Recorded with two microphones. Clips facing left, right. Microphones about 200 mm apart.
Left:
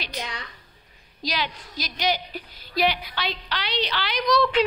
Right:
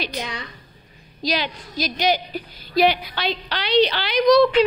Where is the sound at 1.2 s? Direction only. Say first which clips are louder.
Right 5 dB; 20° right (ahead or behind).